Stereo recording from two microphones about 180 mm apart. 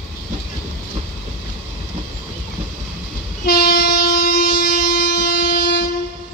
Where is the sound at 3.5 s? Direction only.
65° left (ahead or behind).